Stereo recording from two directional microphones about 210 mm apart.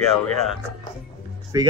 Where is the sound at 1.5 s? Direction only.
20° right (ahead or behind).